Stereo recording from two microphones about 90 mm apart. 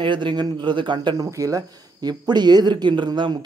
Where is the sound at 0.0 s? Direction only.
60° right (ahead or behind).